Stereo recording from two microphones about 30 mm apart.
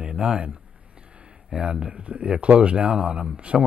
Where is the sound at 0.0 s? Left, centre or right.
Right.